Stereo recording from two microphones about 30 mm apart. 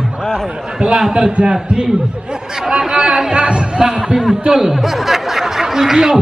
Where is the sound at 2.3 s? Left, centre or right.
Right.